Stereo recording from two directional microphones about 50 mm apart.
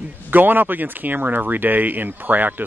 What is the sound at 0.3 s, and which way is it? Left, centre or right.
Speech, right.